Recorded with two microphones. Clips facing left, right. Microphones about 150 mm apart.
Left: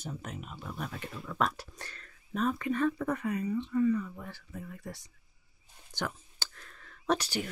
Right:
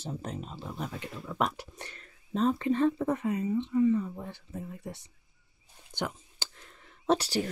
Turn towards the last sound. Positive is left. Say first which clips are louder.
# right 4 dB
turn(degrees=-30)  # may be behind; listen again after turning